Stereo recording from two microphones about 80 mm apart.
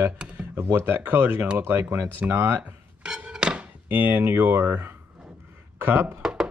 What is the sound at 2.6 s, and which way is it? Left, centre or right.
Speech, centre.